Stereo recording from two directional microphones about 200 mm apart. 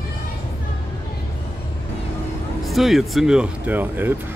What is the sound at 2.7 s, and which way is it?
Speech, centre (ahead or behind).